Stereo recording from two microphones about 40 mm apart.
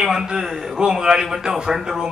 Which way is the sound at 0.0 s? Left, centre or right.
Centre.